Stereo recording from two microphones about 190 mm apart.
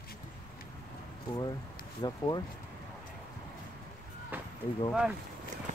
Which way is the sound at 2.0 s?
20° left (ahead or behind).